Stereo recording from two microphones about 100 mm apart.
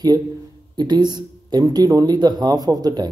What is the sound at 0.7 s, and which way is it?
A man's voice, 45° right (ahead or behind).